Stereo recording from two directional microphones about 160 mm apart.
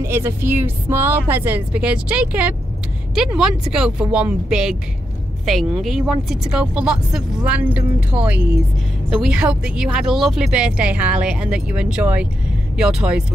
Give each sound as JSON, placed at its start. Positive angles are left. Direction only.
{"t": 0.0, "sound": "speech", "side_deg": -15}